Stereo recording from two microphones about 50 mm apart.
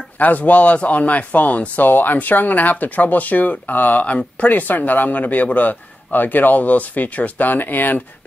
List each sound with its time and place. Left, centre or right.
0.2 s speech: left